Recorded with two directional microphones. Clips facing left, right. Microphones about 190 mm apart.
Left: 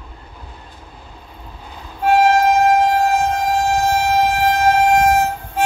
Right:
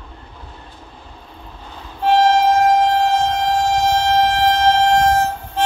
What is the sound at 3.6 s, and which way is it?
Train, 10° left (ahead or behind).